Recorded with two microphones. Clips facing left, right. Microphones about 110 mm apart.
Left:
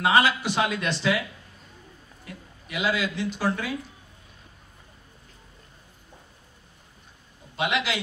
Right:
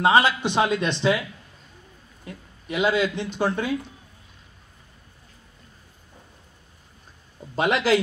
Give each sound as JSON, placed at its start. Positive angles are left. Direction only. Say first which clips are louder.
{"t": 0.0, "sound": "speech", "louder": "right 3 dB", "side_deg": -25}
{"t": 2.2, "sound": "speech", "louder": "right 6 dB", "side_deg": -25}
{"t": 7.5, "sound": "speech", "louder": "right 7 dB", "side_deg": -40}